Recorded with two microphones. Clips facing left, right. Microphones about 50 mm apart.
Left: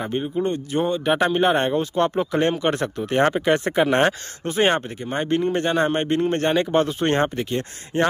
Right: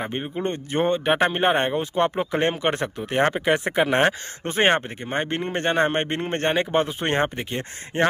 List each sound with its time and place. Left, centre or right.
0.0 s speech: right
3.1 s speech: centre
4.5 s speech: right